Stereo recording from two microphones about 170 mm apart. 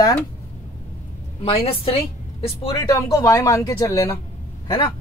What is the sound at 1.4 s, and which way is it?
Speech, 35° left (ahead or behind).